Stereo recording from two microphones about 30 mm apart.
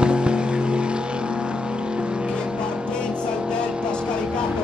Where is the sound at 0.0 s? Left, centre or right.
Right.